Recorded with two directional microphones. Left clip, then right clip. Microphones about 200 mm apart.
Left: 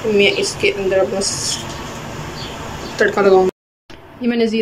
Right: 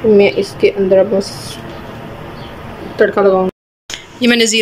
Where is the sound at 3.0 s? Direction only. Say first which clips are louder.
Right 2 dB; 10° right (ahead or behind).